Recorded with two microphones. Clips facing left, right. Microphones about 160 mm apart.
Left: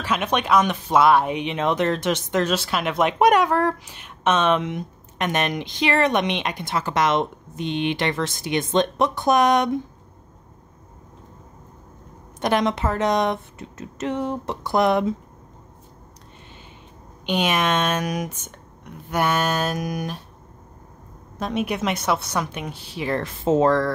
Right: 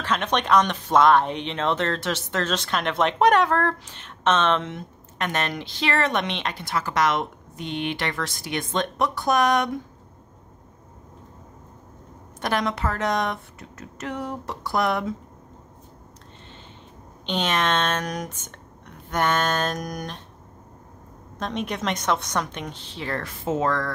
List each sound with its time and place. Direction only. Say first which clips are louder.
0.0 s speech: left 1 dB; 10° left (ahead or behind)
12.4 s speech: left 4 dB; 20° left (ahead or behind)
17.3 s speech: left 2 dB; 10° left (ahead or behind)
21.4 s speech: left 4 dB; 5° left (ahead or behind); by 23.9 s 30° left (ahead or behind)